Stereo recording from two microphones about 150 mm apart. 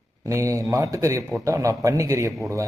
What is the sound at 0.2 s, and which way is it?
A man's voice, 20° right (ahead or behind).